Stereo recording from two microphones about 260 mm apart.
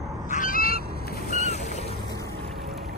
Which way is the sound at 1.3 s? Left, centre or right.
Left.